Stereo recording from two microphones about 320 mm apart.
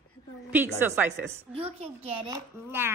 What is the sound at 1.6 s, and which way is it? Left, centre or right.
A child's voice, centre.